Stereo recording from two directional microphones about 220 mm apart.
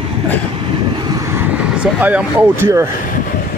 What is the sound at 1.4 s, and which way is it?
Speech, 5° right (ahead or behind).